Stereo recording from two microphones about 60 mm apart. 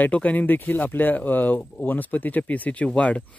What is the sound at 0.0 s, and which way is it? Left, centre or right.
Speech, left.